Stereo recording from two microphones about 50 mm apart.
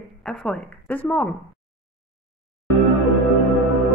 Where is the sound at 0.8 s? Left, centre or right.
Left.